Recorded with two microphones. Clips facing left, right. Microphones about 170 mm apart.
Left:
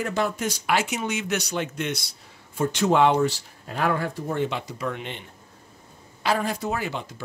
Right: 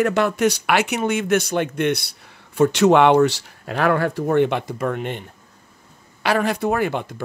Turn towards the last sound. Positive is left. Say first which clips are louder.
# right 8 dB
turn(degrees=-55)  # may be behind; listen again after turning